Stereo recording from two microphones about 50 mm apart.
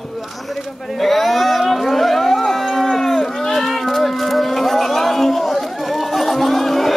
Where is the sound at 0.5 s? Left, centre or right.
Centre.